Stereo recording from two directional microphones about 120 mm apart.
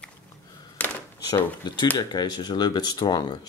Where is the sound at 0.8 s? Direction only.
15° left (ahead or behind).